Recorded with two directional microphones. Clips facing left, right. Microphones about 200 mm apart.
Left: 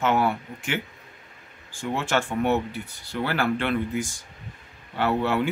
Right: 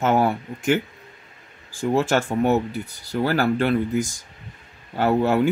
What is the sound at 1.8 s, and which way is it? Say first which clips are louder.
Speech: right 6 dB; 40° right (ahead or behind).